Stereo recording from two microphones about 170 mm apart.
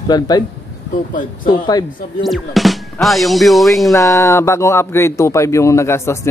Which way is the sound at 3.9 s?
20° left (ahead or behind).